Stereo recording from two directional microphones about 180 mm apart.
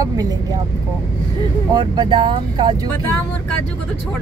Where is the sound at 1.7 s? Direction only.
25° right (ahead or behind).